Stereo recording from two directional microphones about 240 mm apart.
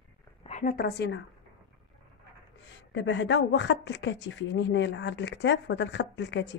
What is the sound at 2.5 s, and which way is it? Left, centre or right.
Speech, left.